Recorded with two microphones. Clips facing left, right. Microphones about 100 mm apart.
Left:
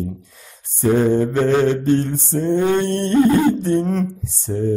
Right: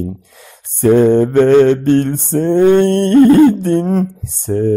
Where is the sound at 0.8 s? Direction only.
60° right (ahead or behind).